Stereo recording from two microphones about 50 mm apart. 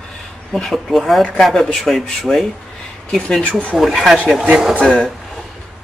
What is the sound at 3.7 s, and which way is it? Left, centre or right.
Speech, centre.